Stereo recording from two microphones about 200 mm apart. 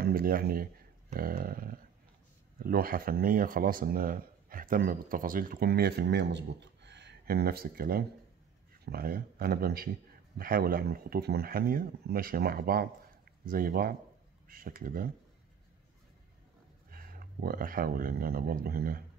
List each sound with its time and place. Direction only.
0.0 s speech: 45° right (ahead or behind)
16.9 s speech: 45° right (ahead or behind)